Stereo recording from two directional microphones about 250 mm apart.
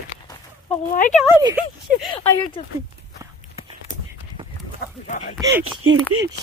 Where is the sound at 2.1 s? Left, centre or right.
Left.